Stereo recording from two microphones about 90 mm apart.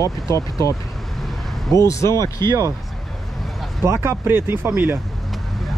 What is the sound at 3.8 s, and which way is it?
Speech, 30° right (ahead or behind).